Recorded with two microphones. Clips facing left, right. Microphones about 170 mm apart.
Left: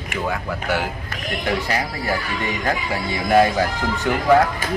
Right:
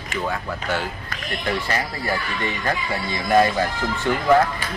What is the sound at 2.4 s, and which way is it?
Speech, 15° left (ahead or behind).